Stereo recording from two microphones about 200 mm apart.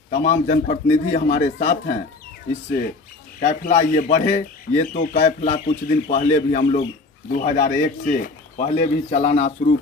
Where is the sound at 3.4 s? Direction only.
40° left (ahead or behind).